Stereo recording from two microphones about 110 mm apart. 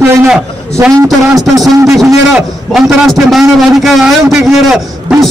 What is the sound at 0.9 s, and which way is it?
Speech, 30° right (ahead or behind).